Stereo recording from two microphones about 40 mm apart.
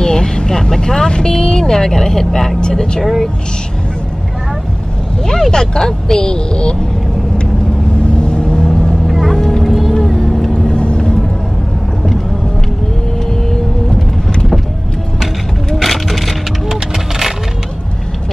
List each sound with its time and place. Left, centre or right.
0.0 s speech: centre
5.2 s speech: centre
8.3 s vehicle: left
9.0 s vehicle: centre
9.3 s music: centre
9.7 s music: centre
9.9 s vehicle: centre
10.5 s vehicle: centre
15.7 s vehicle: centre